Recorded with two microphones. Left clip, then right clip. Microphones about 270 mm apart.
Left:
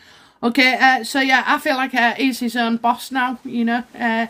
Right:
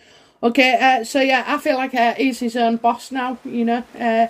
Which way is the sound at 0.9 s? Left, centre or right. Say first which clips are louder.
Even; centre.